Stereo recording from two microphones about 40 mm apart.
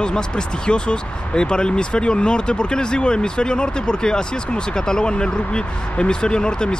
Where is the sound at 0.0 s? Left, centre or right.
Left.